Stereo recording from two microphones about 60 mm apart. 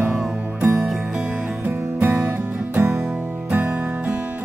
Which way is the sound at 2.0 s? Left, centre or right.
Right.